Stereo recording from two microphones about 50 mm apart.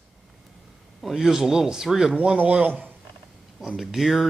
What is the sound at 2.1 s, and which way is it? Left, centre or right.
Speech, right.